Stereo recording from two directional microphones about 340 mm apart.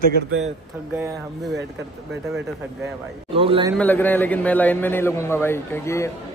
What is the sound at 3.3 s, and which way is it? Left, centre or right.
Speech, centre.